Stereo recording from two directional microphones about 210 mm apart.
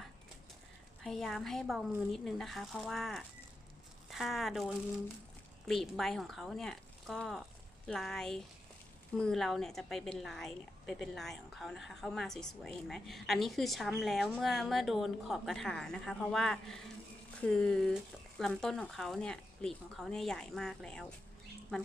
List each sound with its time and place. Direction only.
1.0 s a woman's voice: centre (ahead or behind)